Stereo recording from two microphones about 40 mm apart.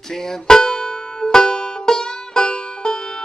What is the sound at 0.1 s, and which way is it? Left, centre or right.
Music, centre.